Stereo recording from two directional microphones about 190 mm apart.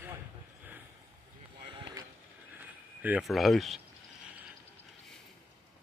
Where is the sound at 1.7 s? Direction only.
25° right (ahead or behind).